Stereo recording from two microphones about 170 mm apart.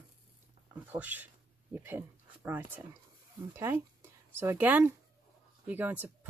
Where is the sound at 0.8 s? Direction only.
10° right (ahead or behind).